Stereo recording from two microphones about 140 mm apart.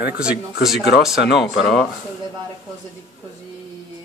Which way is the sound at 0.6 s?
Centre (ahead or behind).